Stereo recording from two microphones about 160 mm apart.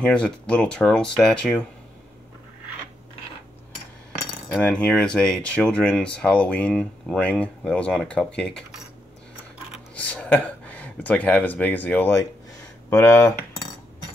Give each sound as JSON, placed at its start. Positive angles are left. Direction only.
{"t": 0.0, "sound": "speech", "side_deg": 5}
{"t": 4.5, "sound": "speech", "side_deg": 5}
{"t": 9.9, "sound": "speech", "side_deg": 10}